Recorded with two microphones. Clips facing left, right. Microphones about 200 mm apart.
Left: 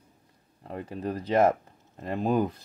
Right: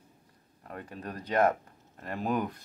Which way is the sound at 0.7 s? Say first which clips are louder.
Left 7 dB; 25° left (ahead or behind).